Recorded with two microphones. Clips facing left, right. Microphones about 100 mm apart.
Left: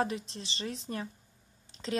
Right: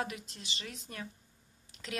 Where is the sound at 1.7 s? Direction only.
30° left (ahead or behind).